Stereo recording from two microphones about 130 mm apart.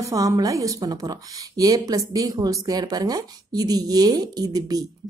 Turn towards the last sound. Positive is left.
turn(degrees=-30)  # may be behind; listen again after turning